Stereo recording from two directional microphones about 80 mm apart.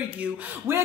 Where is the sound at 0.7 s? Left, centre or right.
Right.